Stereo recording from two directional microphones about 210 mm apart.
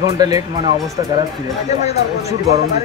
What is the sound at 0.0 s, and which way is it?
Speech, 15° right (ahead or behind).